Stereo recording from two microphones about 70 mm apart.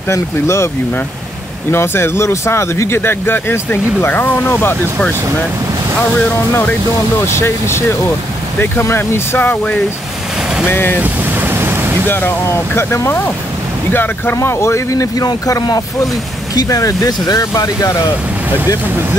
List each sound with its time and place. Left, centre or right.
0.1 s speech: left
1.7 s speech: left
7.2 s speech: left
11.0 s ocean: right
12.1 s speech: left
14.3 s speech: left
15.6 s speech: left